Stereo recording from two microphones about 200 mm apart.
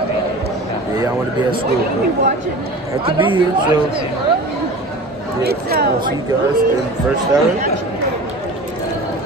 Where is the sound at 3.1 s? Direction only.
25° right (ahead or behind).